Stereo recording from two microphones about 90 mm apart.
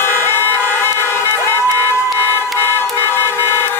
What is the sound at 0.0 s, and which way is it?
Emergency vehicle, 25° left (ahead or behind).